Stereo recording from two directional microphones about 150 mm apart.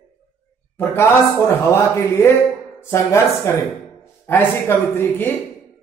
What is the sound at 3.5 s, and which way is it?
Speech, 20° left (ahead or behind).